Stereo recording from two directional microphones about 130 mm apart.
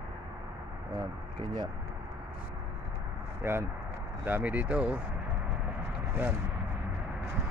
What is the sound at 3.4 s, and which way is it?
Vehicle, 20° right (ahead or behind).